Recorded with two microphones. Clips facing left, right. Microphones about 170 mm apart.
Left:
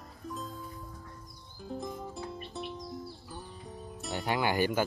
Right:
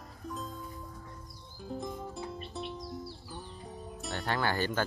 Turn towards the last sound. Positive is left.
turn(degrees=10)  # may be behind; listen again after turning